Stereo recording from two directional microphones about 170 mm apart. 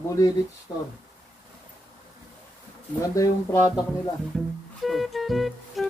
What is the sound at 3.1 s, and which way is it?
Speech, 20° left (ahead or behind).